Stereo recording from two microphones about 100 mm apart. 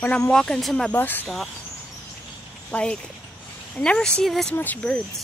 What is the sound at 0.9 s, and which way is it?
Speech, 20° left (ahead or behind).